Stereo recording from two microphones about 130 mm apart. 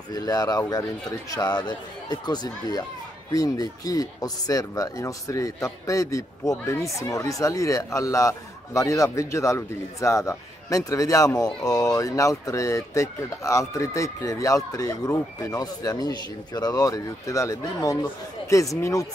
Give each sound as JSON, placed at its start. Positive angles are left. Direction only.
{"t": 0.1, "sound": "speech", "side_deg": 30}